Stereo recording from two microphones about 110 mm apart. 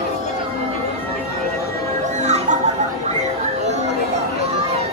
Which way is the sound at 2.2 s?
90° right.